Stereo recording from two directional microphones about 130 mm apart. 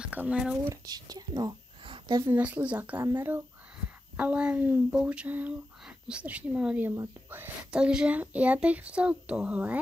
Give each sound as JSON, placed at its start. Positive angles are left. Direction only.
{"t": 0.0, "sound": "speech", "side_deg": -10}
{"t": 0.8, "sound": "whispering", "side_deg": -30}
{"t": 2.2, "sound": "speech", "side_deg": -10}